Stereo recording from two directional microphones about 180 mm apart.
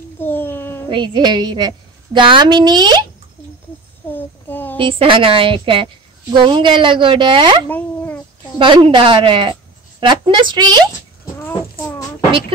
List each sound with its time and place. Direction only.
0.2 s a sound: 10° left (ahead or behind)
0.8 s a woman's voice: 25° right (ahead or behind)
4.1 s child singing: 10° left (ahead or behind)
4.7 s a woman's voice: 30° right (ahead or behind)
7.6 s a sound: 10° left (ahead or behind)
8.5 s a woman's voice: 30° right (ahead or behind)
12.3 s beatboxing: 30° right (ahead or behind)